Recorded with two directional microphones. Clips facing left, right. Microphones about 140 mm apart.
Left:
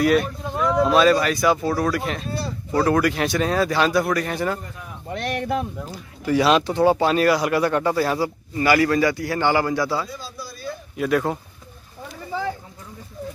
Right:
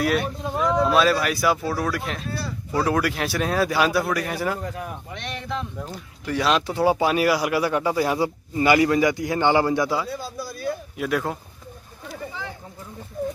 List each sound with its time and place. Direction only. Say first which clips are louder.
0.0 s speech: left 4 dB; centre (ahead or behind)
4.6 s a man's voice: right 7 dB; 90° right
5.1 s speech: left 9 dB; 55° left (ahead or behind)
5.8 s speech: left 1 dB; 5° left (ahead or behind); by 10.0 s 15° right (ahead or behind)
10.0 s a sound: right 4 dB; 55° right (ahead or behind)
11.0 s speech: left 6 dB; centre (ahead or behind)